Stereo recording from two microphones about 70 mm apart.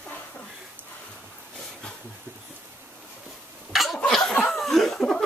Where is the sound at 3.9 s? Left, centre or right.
Centre.